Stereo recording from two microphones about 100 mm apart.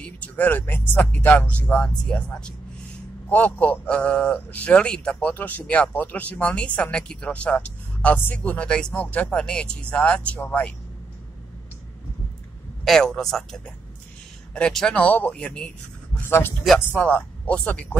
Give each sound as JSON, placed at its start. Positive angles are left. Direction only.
{"t": 0.0, "sound": "speech", "side_deg": 15}
{"t": 12.8, "sound": "a man's voice", "side_deg": 5}
{"t": 16.2, "sound": "a man's voice", "side_deg": 25}